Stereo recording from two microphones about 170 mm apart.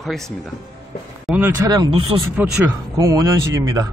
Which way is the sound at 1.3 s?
Centre (ahead or behind).